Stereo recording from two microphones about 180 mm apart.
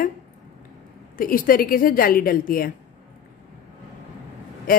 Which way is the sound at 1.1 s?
50° left (ahead or behind).